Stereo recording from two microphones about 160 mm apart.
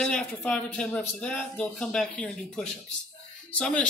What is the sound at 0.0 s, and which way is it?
Speech, 5° left (ahead or behind).